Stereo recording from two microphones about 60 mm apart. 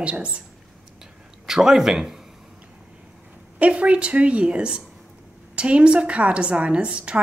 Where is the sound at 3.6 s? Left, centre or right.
Right.